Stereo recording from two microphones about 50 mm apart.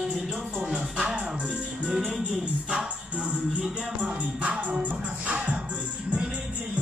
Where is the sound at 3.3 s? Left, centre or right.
Centre.